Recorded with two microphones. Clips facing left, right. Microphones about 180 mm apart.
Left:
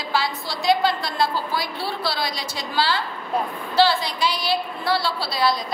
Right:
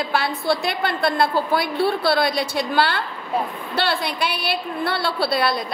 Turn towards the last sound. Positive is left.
turn(degrees=-60)  # may be behind; listen again after turning